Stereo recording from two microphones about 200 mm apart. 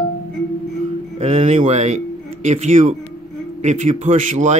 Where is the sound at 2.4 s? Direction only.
35° right (ahead or behind).